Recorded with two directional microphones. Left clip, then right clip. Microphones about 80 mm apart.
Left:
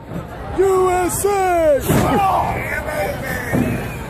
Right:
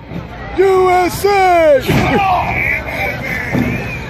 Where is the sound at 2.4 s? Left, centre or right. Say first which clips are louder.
Right 5 dB; left.